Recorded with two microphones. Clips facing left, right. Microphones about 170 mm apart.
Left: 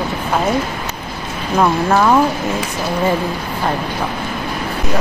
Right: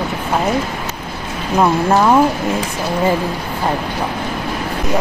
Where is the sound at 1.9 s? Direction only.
15° right (ahead or behind).